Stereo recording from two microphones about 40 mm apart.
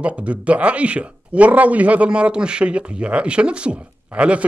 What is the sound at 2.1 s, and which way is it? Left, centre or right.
Speech, right.